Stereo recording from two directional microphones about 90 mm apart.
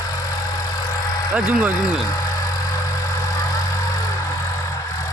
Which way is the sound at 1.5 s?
15° right (ahead or behind).